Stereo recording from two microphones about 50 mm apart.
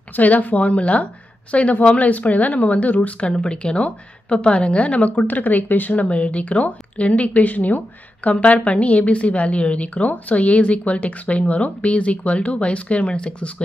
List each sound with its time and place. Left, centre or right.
0.1 s speech: left
3.3 s speech: centre; by 6.0 s left
6.0 s speech: left